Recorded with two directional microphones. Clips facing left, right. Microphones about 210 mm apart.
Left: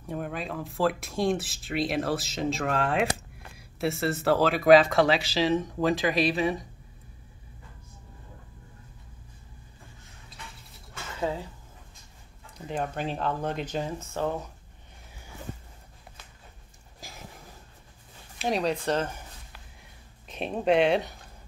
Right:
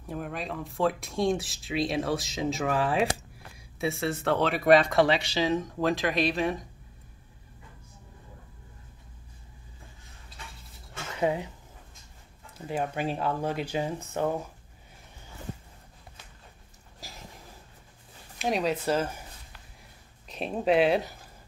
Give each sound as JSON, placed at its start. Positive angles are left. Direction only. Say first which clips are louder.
{"t": 0.0, "sound": "speech", "louder": "left 1 dB", "side_deg": 0}
{"t": 11.1, "sound": "speech", "louder": "right 3 dB", "side_deg": -15}
{"t": 12.5, "sound": "speech", "louder": "right 1 dB", "side_deg": -5}
{"t": 17.0, "sound": "a sound", "louder": "left 1 dB", "side_deg": 0}
{"t": 18.4, "sound": "speech", "louder": "even", "side_deg": 0}
{"t": 19.8, "sound": "a sound", "louder": "left 1 dB", "side_deg": 0}